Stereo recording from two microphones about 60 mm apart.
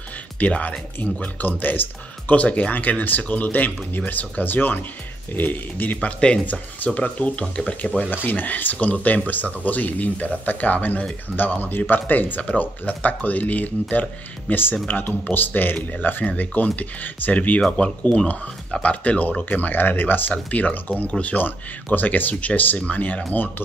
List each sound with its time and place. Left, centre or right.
0.4 s speech: left
6.0 s speech: centre
6.4 s speech: left